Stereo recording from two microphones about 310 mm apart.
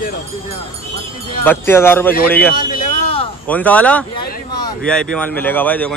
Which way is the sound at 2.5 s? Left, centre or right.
Left.